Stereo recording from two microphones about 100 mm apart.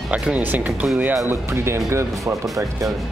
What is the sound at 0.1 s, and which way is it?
Speech, 15° right (ahead or behind).